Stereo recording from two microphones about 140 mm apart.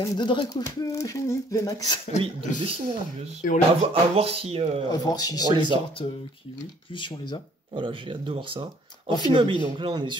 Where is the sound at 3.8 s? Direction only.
45° right (ahead or behind).